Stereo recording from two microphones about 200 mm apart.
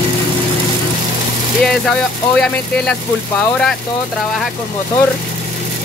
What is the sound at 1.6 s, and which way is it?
Speech, 5° left (ahead or behind).